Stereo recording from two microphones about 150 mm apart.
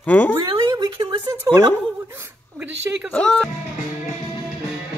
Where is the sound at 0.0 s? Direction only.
10° left (ahead or behind).